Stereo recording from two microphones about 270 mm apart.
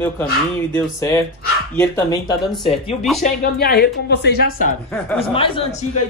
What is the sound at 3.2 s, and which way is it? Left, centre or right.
Speech, left.